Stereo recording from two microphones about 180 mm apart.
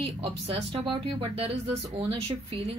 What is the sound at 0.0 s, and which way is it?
Speech, 35° right (ahead or behind).